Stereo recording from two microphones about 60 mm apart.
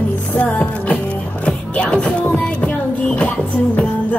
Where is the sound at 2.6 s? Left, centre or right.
Centre.